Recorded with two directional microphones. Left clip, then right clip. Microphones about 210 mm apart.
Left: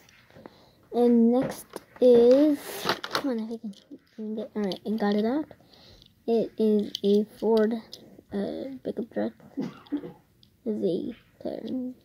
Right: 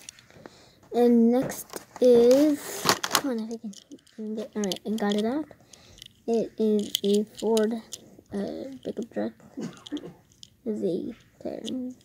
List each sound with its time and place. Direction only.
0.9 s speech: 5° right (ahead or behind)
2.9 s a sound: 40° right (ahead or behind)
3.3 s speech: centre (ahead or behind)
4.9 s speech: 5° left (ahead or behind)
10.6 s a woman's voice: 5° left (ahead or behind)